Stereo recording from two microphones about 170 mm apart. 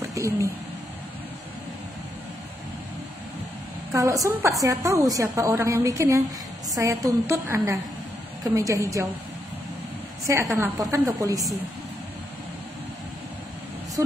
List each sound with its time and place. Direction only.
0.1 s speech: 15° right (ahead or behind)
3.9 s a woman's voice: 20° right (ahead or behind)
10.2 s a woman's voice: 20° right (ahead or behind)
14.0 s speech: 15° right (ahead or behind)